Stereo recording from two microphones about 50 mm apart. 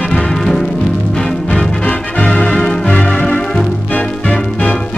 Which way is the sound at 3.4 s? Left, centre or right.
Centre.